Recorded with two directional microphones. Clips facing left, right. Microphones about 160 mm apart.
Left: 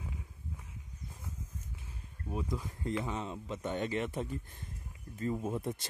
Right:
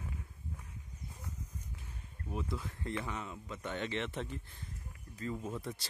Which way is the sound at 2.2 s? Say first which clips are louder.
Left 2 dB; 15° left (ahead or behind).